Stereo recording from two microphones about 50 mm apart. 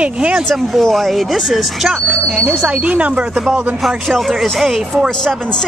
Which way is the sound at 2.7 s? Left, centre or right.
Right.